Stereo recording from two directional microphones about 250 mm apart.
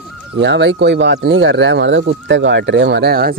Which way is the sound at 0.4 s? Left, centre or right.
Right.